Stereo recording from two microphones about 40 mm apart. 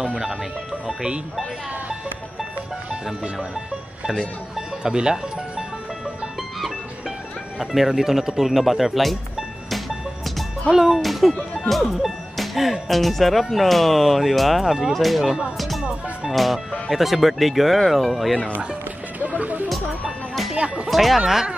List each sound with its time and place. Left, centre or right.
4.9 s speech: centre
7.5 s speech: centre
9.7 s music: centre
10.7 s speech: centre
15.5 s music: centre
16.3 s speech: centre
19.1 s music: right
20.5 s music: right
20.9 s speech: centre